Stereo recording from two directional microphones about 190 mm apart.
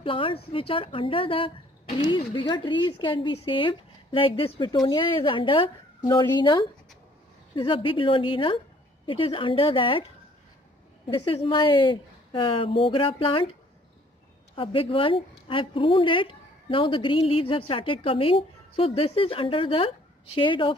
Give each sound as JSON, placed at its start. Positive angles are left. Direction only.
{"t": 0.0, "sound": "a woman's voice", "side_deg": 30}
{"t": 7.5, "sound": "a woman's voice", "side_deg": 25}
{"t": 11.1, "sound": "a woman's voice", "side_deg": 25}
{"t": 14.5, "sound": "a woman's voice", "side_deg": 25}